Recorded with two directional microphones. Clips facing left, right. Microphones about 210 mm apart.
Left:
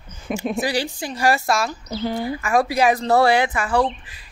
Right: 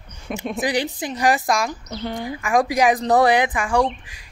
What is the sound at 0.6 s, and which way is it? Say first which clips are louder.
A woman's voice: right 1 dB; 20° right (ahead or behind).